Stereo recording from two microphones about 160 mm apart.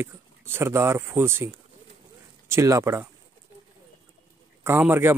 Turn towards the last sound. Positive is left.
turn(degrees=-15)  # may be behind; listen again after turning